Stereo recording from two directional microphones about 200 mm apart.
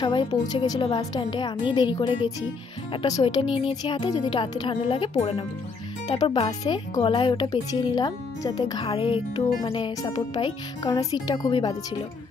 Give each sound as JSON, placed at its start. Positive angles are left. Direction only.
{"t": 0.0, "sound": "speech", "side_deg": 25}
{"t": 10.8, "sound": "speech", "side_deg": 20}